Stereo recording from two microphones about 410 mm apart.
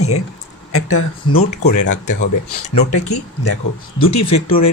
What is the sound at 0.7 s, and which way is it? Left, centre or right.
Speech, left.